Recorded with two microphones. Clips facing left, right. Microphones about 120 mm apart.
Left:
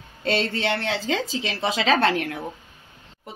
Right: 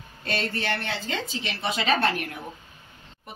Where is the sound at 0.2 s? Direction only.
90° left.